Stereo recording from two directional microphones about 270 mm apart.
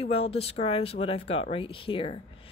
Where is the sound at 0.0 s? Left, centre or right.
Left.